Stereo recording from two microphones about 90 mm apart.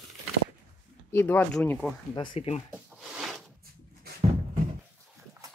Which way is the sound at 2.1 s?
70° left (ahead or behind).